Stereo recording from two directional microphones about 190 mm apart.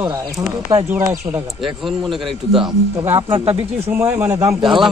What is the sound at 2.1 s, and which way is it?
Speech, centre (ahead or behind).